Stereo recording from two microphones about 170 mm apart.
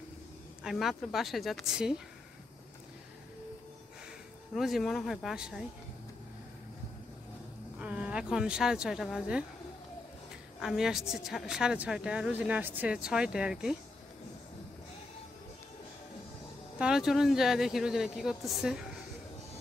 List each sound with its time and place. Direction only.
0.7 s speech: centre (ahead or behind)
4.6 s speech: centre (ahead or behind)
7.8 s speech: 5° right (ahead or behind)
10.6 s speech: centre (ahead or behind)
16.7 s speech: 5° right (ahead or behind)